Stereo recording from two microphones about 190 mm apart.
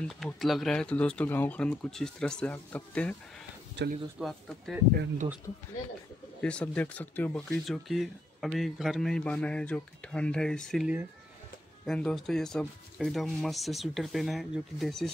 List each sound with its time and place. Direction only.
0.0 s speech: centre (ahead or behind)
3.8 s speech: 65° right (ahead or behind)
4.2 s speech: centre (ahead or behind)
4.9 s speech: 45° right (ahead or behind)
6.4 s speech: 5° left (ahead or behind)